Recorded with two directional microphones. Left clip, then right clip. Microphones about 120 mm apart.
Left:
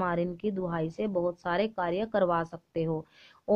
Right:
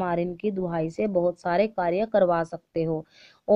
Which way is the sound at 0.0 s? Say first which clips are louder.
Right 3 dB; 35° right (ahead or behind).